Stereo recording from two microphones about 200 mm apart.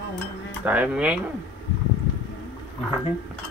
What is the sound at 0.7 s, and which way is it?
Speech, 5° right (ahead or behind).